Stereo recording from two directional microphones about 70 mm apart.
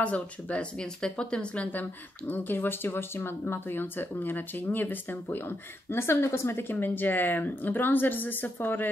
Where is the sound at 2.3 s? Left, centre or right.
Left.